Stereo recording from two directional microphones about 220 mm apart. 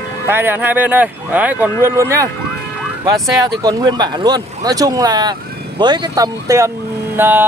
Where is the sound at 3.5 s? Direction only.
15° right (ahead or behind).